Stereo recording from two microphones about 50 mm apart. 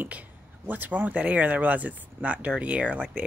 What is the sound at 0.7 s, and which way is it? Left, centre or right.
Speech, right.